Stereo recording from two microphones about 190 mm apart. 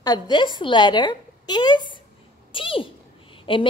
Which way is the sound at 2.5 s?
25° left (ahead or behind).